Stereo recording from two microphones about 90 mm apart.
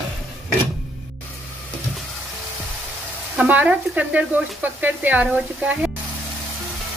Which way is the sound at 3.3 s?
15° right (ahead or behind).